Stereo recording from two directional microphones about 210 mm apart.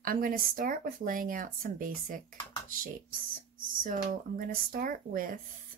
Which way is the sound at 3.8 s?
40° right (ahead or behind).